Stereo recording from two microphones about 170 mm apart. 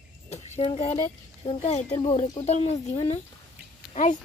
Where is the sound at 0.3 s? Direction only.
35° left (ahead or behind).